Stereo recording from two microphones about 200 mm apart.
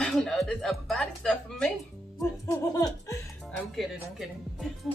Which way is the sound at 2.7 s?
20° left (ahead or behind).